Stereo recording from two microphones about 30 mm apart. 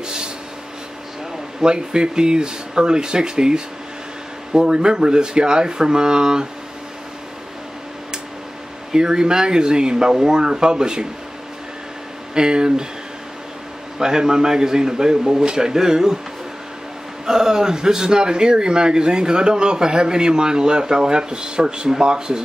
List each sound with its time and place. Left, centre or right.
0.0 s a sound: right
1.6 s a man's voice: right
8.9 s a man's voice: right
12.4 s a man's voice: right
13.9 s a man's voice: right
17.3 s a man's voice: centre